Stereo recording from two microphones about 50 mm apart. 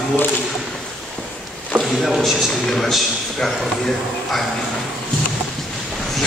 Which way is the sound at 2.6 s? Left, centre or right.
Centre.